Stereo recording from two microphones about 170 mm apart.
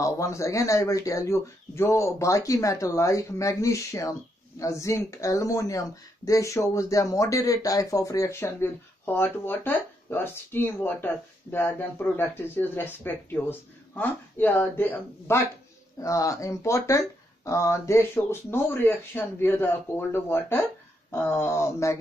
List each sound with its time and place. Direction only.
0.0 s speech: 15° left (ahead or behind)